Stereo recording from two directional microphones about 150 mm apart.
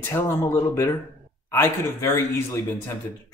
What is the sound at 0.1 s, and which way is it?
Speech, 15° left (ahead or behind).